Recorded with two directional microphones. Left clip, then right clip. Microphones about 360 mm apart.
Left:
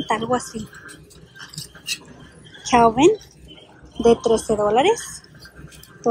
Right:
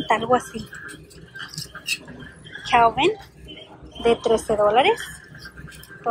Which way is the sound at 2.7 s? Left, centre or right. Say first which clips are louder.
Left 3 dB; centre.